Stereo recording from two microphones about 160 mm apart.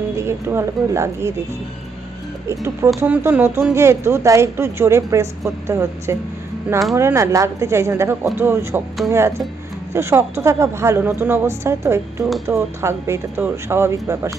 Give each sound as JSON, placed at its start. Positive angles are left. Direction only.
{"t": 0.2, "sound": "a woman's voice", "side_deg": -15}
{"t": 2.4, "sound": "a woman's voice", "side_deg": -20}
{"t": 9.9, "sound": "a woman's voice", "side_deg": -15}